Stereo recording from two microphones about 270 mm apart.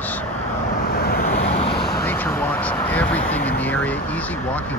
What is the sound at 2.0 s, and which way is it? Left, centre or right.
Speech, centre.